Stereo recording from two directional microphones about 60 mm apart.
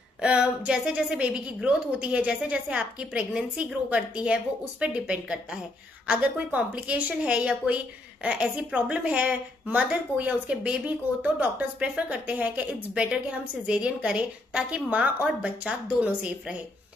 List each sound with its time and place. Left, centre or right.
0.2 s a woman's voice: centre
12.9 s a woman's voice: centre